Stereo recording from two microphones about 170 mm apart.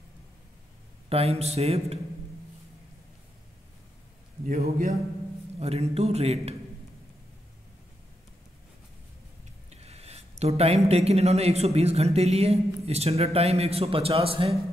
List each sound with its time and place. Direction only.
1.0 s speech: 35° right (ahead or behind)
4.6 s speech: 40° right (ahead or behind)
9.7 s a sound: 40° right (ahead or behind)
10.9 s speech: 40° right (ahead or behind)